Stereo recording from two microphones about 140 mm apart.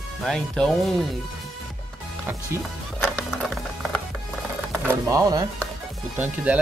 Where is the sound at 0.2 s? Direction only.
5° left (ahead or behind).